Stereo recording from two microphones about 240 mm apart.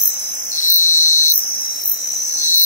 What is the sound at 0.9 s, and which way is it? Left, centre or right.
Cricket, left.